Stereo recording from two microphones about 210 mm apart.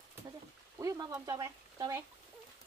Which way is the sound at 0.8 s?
15° right (ahead or behind).